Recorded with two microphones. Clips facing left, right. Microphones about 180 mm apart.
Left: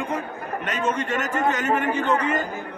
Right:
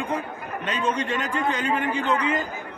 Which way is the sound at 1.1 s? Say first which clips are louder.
Left 2 dB; 45° left (ahead or behind).